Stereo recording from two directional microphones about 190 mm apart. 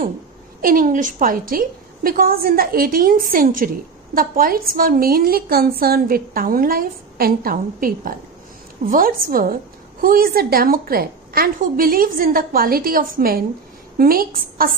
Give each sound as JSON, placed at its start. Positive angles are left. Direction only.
{"t": 0.6, "sound": "a woman's voice", "side_deg": -50}